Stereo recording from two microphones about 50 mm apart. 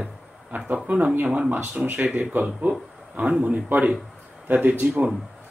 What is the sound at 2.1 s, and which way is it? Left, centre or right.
Speech, right.